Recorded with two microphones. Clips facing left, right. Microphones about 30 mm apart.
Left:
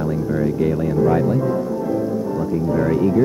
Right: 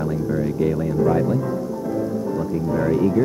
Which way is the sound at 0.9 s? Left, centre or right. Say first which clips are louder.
Left 2 dB; centre.